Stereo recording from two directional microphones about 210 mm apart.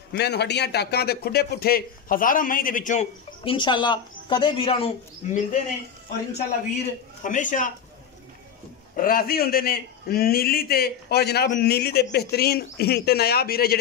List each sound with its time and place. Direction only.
0.1 s speech: 50° left (ahead or behind); by 5.6 s 30° left (ahead or behind)
7.2 s speech: 35° left (ahead or behind)
8.9 s a man's voice: 45° left (ahead or behind)